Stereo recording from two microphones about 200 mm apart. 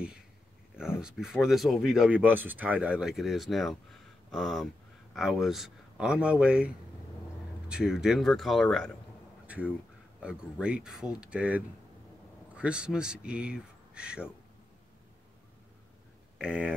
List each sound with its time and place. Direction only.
0.7 s speech: 5° right (ahead or behind)
16.3 s speech: 5° right (ahead or behind)